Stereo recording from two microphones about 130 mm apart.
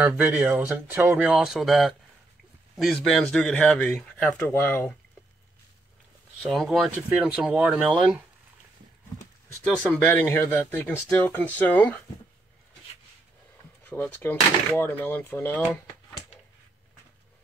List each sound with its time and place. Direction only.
0.0 s speech: 5° right (ahead or behind); by 4.9 s 15° left (ahead or behind)
6.5 s speech: centre (ahead or behind)
9.6 s speech: 10° left (ahead or behind)
13.8 s speech: 15° left (ahead or behind)